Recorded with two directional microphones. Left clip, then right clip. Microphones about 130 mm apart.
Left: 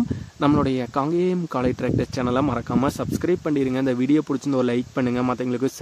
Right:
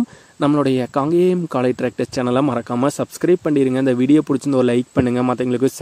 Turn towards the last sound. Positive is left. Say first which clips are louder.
# right 6 dB
turn(degrees=-45)  # may be behind; listen again after turning